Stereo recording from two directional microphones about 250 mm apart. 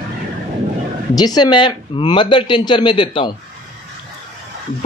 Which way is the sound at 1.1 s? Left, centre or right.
Centre.